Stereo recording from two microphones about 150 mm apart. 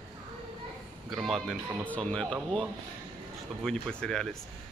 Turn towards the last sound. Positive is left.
turn(degrees=5)  # may be behind; listen again after turning